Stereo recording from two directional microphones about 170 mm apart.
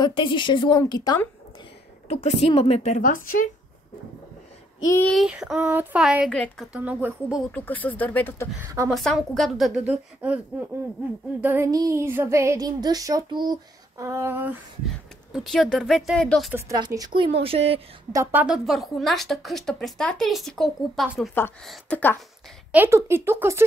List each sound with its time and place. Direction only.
0.0 s a woman's voice: 25° left (ahead or behind)
2.0 s a woman's voice: 35° left (ahead or behind); by 3.4 s 55° left (ahead or behind)
4.8 s speech: 15° left (ahead or behind)
5.1 s speech: 5° right (ahead or behind)
6.7 s speech: 10° right (ahead or behind)
7.5 s speech: 10° left (ahead or behind)
8.6 s speech: 20° right (ahead or behind)
8.9 s speech: centre (ahead or behind)
11.4 s speech: 15° right (ahead or behind)
15.3 s speech: centre (ahead or behind)
16.5 s speech: 20° right (ahead or behind)
18.1 s speech: 15° right (ahead or behind); by 22.2 s 10° left (ahead or behind)
22.7 s speech: 15° right (ahead or behind)